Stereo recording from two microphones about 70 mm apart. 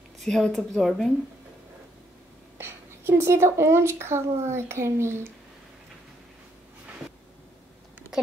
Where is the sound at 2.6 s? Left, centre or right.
Right.